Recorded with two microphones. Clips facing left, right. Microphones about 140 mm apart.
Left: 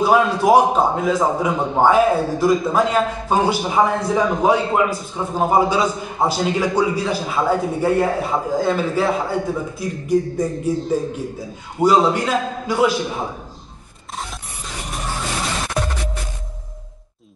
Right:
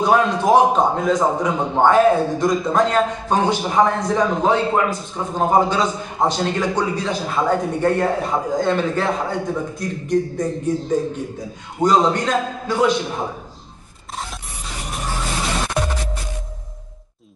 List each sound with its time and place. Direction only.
0.0 s a man's voice: 5° left (ahead or behind)